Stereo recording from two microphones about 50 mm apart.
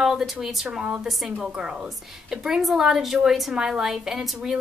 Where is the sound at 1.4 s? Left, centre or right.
Centre.